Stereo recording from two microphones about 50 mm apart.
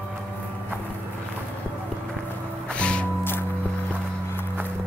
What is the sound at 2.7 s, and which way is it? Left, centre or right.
Music, left.